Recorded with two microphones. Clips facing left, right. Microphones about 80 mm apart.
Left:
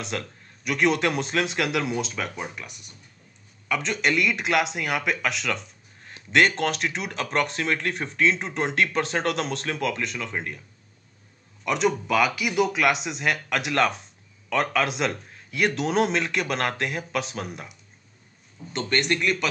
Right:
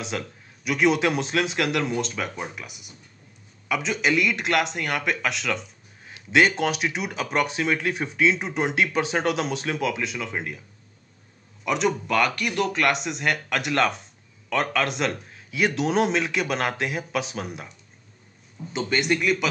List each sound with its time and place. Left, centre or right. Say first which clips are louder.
0.0 s speech: right 1 dB; centre
11.6 s speech: even; centre
18.7 s speech: right 1 dB; centre